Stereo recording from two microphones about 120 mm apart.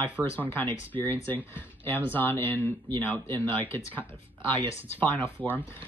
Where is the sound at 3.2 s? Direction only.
40° right (ahead or behind).